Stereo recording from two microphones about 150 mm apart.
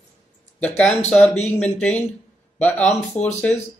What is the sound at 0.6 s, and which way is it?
Speech, 10° left (ahead or behind).